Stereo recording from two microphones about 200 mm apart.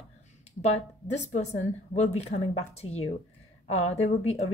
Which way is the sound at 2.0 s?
30° left (ahead or behind).